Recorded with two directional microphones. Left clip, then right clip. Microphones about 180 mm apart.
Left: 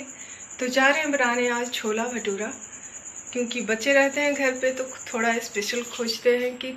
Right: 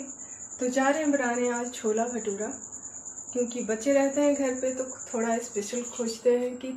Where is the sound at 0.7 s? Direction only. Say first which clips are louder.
Left 5 dB; centre (ahead or behind).